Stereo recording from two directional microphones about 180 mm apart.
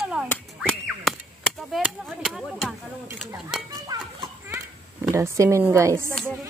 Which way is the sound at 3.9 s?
20° right (ahead or behind).